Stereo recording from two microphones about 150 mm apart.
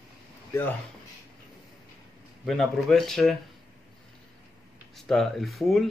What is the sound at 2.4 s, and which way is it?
Speech, centre (ahead or behind).